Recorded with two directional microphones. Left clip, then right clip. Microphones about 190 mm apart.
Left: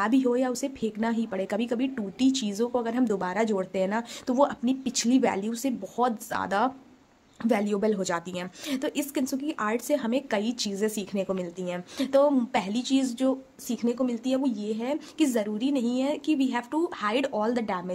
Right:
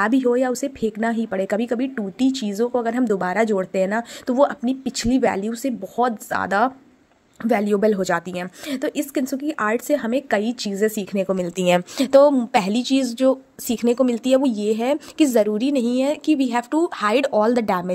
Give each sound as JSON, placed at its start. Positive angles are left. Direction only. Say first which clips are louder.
{"t": 0.0, "sound": "speech", "louder": "right 6 dB", "side_deg": -20}
{"t": 11.3, "sound": "a woman's voice", "louder": "right 14 dB", "side_deg": -45}
{"t": 12.0, "sound": "a woman's voice", "louder": "right 7 dB", "side_deg": -30}